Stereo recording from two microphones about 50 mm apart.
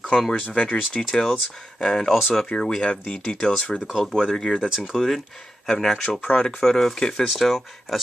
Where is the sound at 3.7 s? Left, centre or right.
Centre.